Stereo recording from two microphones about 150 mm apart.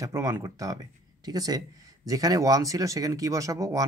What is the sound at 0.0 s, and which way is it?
Speech, 20° right (ahead or behind).